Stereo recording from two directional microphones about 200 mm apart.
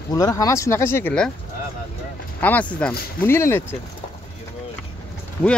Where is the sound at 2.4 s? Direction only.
5° left (ahead or behind).